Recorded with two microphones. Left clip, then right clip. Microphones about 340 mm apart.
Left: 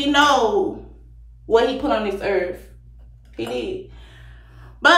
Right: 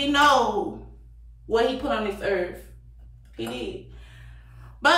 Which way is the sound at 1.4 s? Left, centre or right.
Centre.